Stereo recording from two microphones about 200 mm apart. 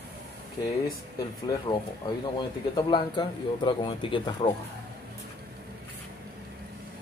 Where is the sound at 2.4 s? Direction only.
20° left (ahead or behind).